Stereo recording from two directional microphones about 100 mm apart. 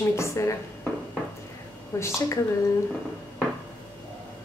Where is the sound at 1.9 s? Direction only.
30° left (ahead or behind).